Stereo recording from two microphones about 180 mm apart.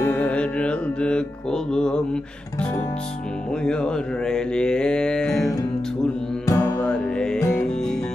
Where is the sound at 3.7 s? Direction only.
5° left (ahead or behind).